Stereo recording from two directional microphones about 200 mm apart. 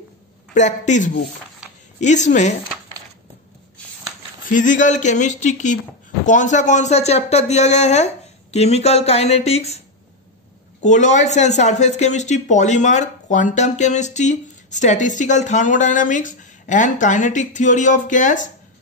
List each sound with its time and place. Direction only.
0.6 s speech: 35° left (ahead or behind)
4.5 s speech: 40° left (ahead or behind)
10.8 s speech: 35° left (ahead or behind)